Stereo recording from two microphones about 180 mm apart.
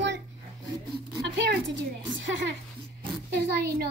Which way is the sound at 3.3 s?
60° right (ahead or behind).